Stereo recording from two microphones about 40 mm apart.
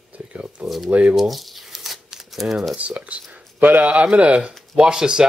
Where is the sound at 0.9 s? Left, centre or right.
Right.